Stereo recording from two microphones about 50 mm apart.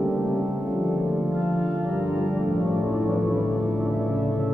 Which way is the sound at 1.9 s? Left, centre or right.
Right.